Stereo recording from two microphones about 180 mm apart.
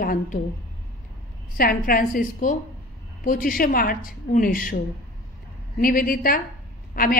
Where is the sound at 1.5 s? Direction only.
50° left (ahead or behind).